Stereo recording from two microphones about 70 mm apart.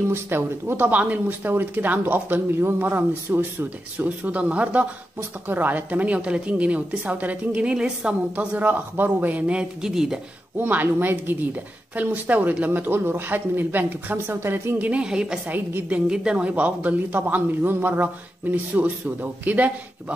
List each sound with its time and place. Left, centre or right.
0.1 s speech: right; by 10.2 s centre
10.6 s speech: right
14.9 s a woman's voice: centre
15.5 s speech: right
16.1 s speech: centre